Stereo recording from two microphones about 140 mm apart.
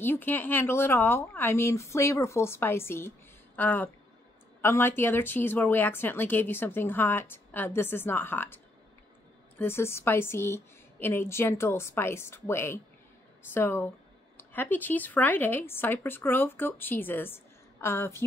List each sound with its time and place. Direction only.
0.0 s speech: 15° left (ahead or behind)
9.6 s speech: 15° left (ahead or behind)